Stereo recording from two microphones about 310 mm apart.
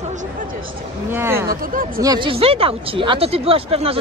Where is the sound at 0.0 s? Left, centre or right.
Right.